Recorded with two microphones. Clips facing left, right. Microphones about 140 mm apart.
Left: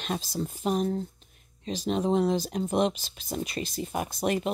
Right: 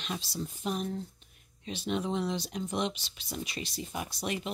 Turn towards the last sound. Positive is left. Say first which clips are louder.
# left 7 dB
turn(degrees=45)  # may be behind; listen again after turning